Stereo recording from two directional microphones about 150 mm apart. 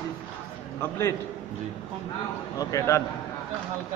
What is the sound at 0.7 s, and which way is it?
Speech, 15° left (ahead or behind).